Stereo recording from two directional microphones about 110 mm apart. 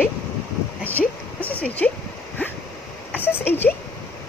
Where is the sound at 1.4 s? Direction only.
15° left (ahead or behind).